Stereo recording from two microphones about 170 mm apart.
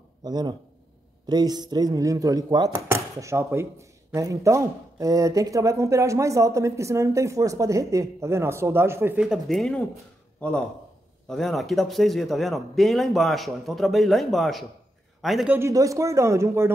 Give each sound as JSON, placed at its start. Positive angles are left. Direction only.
{"t": 0.2, "sound": "a man's voice", "side_deg": -25}
{"t": 15.5, "sound": "speech", "side_deg": -15}